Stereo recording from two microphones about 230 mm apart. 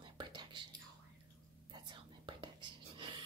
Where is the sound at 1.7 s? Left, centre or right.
Centre.